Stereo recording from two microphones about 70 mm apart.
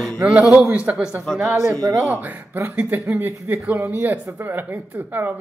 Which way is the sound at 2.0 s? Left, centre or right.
Right.